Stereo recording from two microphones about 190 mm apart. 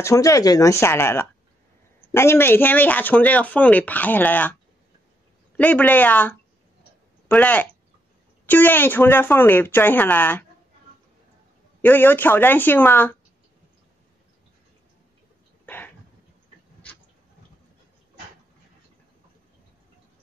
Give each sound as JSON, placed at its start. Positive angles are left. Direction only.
{"t": 0.0, "sound": "speech", "side_deg": 15}
{"t": 5.6, "sound": "speech", "side_deg": 10}
{"t": 11.8, "sound": "speech", "side_deg": 10}
{"t": 15.6, "sound": "a sound", "side_deg": 10}